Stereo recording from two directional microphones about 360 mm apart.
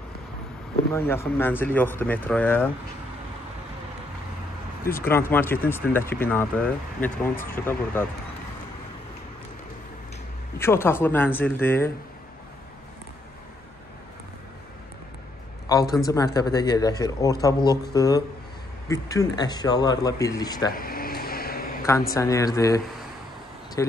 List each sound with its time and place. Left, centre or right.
0.9 s a man's voice: centre
4.9 s speech: centre
10.6 s speech: centre
15.7 s a man's voice: centre
20.7 s a sound: left
22.1 s a man's voice: centre
23.8 s speech: centre